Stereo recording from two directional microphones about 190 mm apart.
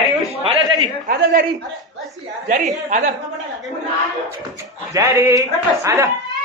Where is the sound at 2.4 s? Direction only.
40° right (ahead or behind).